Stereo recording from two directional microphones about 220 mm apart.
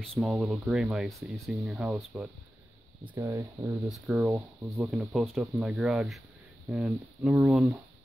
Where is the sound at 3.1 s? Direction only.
15° right (ahead or behind).